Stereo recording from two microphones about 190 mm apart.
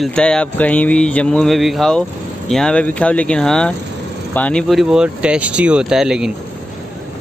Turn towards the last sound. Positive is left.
turn(degrees=-5)  # may be behind; listen again after turning